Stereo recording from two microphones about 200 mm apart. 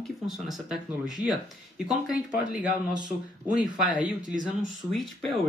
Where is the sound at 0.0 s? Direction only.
Centre (ahead or behind).